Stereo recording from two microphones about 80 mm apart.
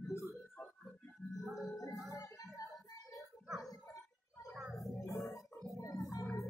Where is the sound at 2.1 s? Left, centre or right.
Left.